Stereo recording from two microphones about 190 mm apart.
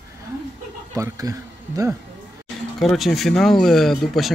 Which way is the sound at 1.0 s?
20° right (ahead or behind).